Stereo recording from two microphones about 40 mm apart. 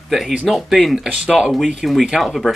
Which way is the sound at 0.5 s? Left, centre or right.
Centre.